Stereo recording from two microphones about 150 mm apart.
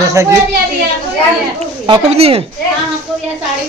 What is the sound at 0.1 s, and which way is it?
Speech, 20° right (ahead or behind).